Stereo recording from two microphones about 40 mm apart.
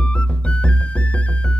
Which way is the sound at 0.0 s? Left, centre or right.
Left.